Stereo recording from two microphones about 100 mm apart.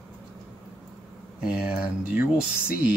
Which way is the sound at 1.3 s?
10° right (ahead or behind).